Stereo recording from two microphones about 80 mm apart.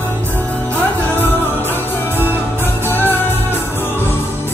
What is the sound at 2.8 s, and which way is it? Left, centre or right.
Music, left.